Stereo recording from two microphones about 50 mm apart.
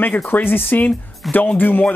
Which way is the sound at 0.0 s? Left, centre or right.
Left.